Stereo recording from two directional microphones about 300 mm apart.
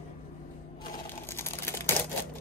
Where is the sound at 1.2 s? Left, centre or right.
Centre.